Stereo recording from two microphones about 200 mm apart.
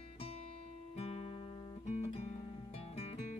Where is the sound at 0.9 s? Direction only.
30° left (ahead or behind).